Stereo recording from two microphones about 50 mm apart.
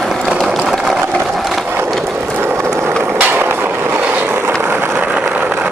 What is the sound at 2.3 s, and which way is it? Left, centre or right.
Vehicle, right.